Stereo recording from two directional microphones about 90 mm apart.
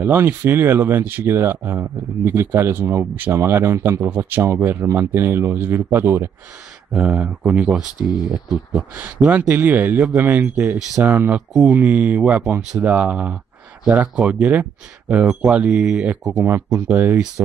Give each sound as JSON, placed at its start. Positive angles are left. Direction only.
{"t": 0.0, "sound": "speech", "side_deg": -20}
{"t": 6.9, "sound": "speech", "side_deg": -15}